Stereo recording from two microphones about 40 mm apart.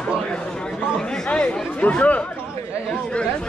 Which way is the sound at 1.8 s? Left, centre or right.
Left.